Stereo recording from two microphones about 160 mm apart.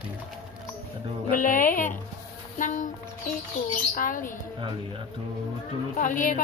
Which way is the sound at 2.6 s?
50° left (ahead or behind).